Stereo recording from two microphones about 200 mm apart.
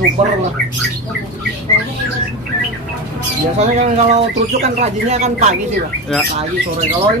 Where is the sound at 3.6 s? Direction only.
35° right (ahead or behind).